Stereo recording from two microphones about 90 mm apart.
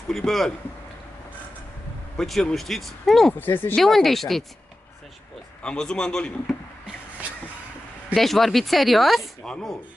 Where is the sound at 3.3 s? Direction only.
20° left (ahead or behind).